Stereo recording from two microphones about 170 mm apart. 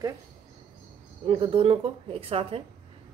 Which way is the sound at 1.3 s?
35° right (ahead or behind).